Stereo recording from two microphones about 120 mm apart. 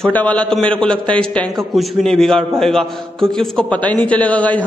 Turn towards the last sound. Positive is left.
turn(degrees=10)  # may be behind; listen again after turning